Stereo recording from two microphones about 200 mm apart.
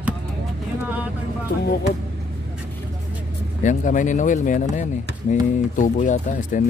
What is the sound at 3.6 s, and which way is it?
Speech, 40° left (ahead or behind).